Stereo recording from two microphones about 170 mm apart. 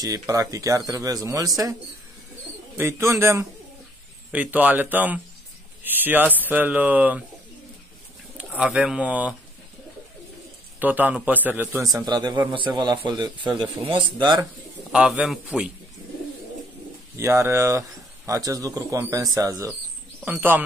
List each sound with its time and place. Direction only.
0.0 s speech: 20° right (ahead or behind)
2.8 s a man's voice: 15° right (ahead or behind)
8.4 s speech: 5° right (ahead or behind)
10.8 s a man's voice: 10° right (ahead or behind); by 14.4 s 25° right (ahead or behind)
14.9 s speech: 5° right (ahead or behind)
17.2 s a man's voice: 15° right (ahead or behind)